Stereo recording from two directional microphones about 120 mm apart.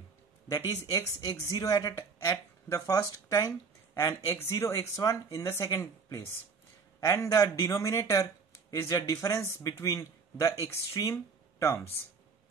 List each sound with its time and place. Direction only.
0.8 s speech: 25° left (ahead or behind)